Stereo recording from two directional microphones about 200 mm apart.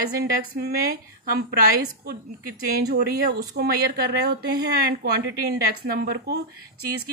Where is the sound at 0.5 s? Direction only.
50° right (ahead or behind).